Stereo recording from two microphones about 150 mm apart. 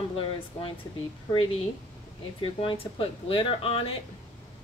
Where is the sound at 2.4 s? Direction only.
35° left (ahead or behind).